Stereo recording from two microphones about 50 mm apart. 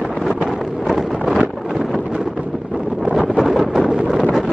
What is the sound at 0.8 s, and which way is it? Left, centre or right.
Wind noise, centre.